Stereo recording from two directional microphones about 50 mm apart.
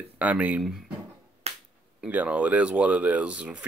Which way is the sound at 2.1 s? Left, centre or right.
Right.